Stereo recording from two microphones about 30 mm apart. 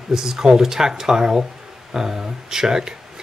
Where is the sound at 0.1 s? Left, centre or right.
Centre.